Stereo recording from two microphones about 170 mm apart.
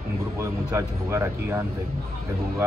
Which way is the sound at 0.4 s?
15° right (ahead or behind).